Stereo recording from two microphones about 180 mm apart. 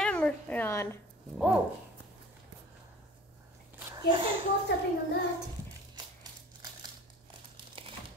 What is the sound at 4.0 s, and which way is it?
Speech, 25° right (ahead or behind).